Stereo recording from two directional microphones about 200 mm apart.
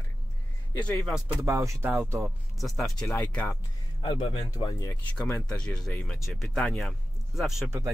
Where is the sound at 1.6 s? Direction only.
15° right (ahead or behind).